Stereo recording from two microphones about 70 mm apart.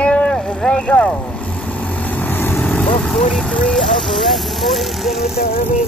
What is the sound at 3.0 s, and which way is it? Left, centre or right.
Speech, centre.